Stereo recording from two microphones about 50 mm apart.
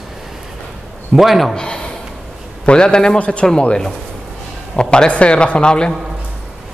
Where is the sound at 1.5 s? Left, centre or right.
Centre.